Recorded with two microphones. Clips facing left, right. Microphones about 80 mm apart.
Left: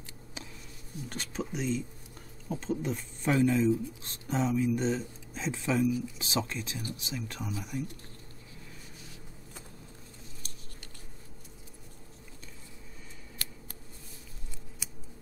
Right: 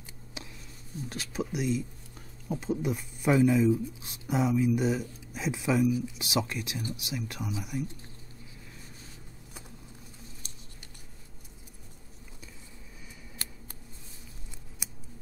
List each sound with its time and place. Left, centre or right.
1.0 s speech: centre
14.8 s scissors: centre